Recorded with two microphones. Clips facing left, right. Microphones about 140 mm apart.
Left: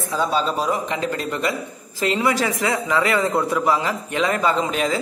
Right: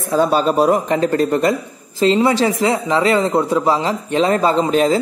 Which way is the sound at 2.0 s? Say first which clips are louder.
Right 6 dB; 25° right (ahead or behind).